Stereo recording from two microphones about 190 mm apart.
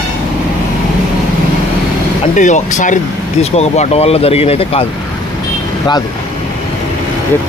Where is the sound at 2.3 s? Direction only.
40° left (ahead or behind).